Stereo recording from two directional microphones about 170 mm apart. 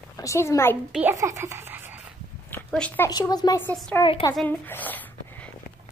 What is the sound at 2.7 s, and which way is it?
Speech, 10° left (ahead or behind).